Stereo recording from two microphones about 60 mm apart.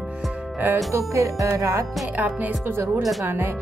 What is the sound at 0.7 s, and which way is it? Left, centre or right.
Music, right.